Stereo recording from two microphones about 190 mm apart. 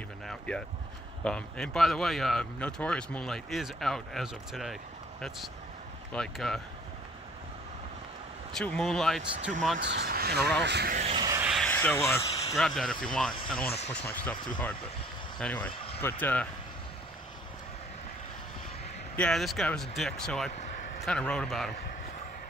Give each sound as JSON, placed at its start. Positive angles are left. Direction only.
{"t": 0.3, "sound": "speech", "side_deg": 5}
{"t": 6.1, "sound": "speech", "side_deg": 0}
{"t": 8.5, "sound": "speech", "side_deg": 5}
{"t": 9.8, "sound": "speech", "side_deg": -65}
{"t": 11.1, "sound": "vehicle", "side_deg": -20}
{"t": 11.4, "sound": "a sound", "side_deg": 0}
{"t": 11.7, "sound": "a sound", "side_deg": 10}
{"t": 12.5, "sound": "speech", "side_deg": 0}
{"t": 15.3, "sound": "speech", "side_deg": 5}
{"t": 19.1, "sound": "speech", "side_deg": 5}
{"t": 20.5, "sound": "a sound", "side_deg": 40}
{"t": 21.0, "sound": "speech", "side_deg": 5}